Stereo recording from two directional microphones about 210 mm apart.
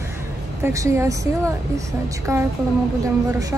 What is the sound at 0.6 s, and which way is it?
Speech, 15° right (ahead or behind).